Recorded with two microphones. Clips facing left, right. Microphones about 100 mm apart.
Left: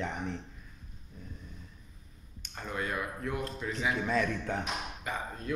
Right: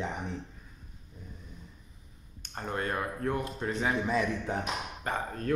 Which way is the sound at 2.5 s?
40° right (ahead or behind).